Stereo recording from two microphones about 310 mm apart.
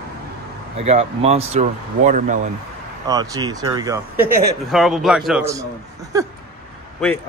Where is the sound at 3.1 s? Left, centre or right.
Centre.